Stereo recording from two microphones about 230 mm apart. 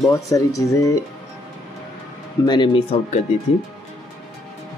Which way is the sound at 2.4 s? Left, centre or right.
Centre.